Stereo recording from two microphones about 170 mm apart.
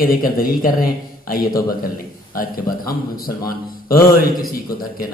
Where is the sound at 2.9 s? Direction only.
60° left (ahead or behind).